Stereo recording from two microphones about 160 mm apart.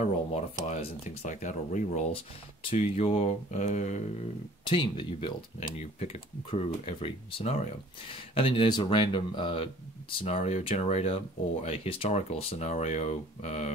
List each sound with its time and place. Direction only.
0.0 s speech: 45° left (ahead or behind)
4.6 s speech: 30° left (ahead or behind)
5.6 s speech: 40° left (ahead or behind)